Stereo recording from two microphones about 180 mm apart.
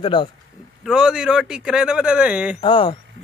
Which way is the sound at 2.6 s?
25° left (ahead or behind).